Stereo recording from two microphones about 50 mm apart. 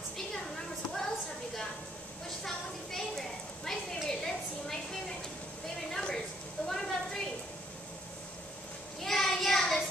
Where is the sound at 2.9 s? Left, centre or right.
Centre.